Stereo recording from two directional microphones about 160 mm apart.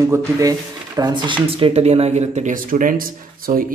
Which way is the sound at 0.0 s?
20° right (ahead or behind).